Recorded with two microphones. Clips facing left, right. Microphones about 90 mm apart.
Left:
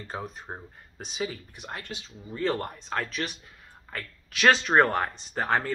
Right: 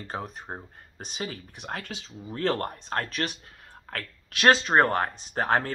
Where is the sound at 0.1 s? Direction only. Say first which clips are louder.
Right 1 dB; 60° right (ahead or behind); by 2.0 s 85° right.